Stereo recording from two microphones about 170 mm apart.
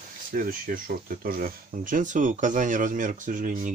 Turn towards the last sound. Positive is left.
turn(degrees=-50)  # may be behind; listen again after turning